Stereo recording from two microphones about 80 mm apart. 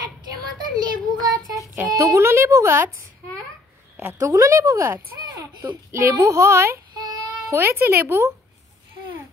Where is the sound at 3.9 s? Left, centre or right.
Right.